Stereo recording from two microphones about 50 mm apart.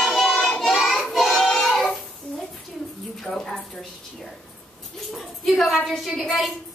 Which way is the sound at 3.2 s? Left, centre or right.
Centre.